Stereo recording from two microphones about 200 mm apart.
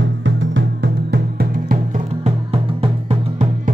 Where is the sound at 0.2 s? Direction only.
65° right (ahead or behind).